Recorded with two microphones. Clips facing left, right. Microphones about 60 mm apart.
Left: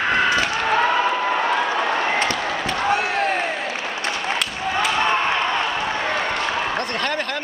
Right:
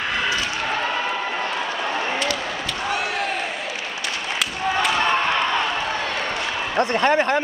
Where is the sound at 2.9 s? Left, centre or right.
Left.